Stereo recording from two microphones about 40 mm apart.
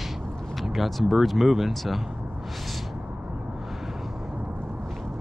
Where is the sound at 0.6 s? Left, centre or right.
Centre.